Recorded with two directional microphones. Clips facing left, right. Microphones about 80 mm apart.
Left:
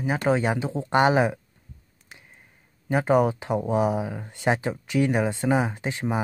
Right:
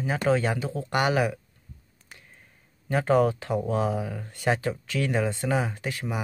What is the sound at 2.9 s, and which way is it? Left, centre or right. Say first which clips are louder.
Speech: left 1 dB; centre.